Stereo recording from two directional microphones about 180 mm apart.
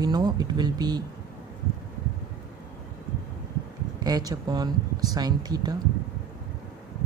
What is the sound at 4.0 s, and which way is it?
Speech, 20° right (ahead or behind).